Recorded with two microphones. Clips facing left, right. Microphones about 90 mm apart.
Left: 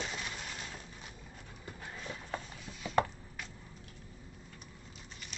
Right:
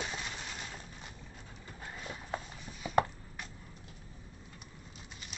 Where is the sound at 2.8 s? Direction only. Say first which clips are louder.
Right 1 dB; 10° right (ahead or behind).